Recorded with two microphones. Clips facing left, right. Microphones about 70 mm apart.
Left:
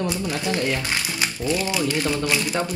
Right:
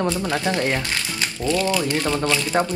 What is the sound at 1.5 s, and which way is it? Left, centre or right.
Speech, centre.